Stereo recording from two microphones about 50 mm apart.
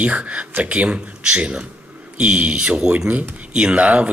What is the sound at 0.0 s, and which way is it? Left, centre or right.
Speech, right.